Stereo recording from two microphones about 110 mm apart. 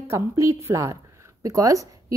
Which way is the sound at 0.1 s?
25° right (ahead or behind).